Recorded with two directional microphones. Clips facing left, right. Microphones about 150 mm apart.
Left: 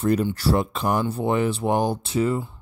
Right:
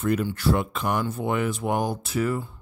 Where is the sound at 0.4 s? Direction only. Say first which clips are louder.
Left 2 dB; 35° left (ahead or behind).